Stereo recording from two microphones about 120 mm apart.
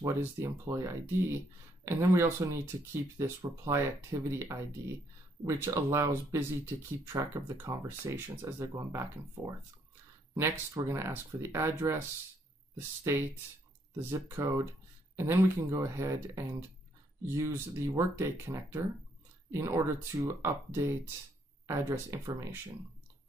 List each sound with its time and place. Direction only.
0.0 s speech: 20° right (ahead or behind)